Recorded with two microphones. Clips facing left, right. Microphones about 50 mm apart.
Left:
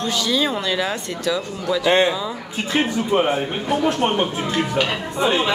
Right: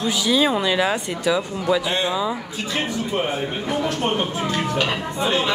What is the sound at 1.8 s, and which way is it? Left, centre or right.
Speech, left.